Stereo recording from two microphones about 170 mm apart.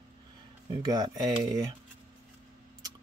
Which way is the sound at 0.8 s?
25° right (ahead or behind).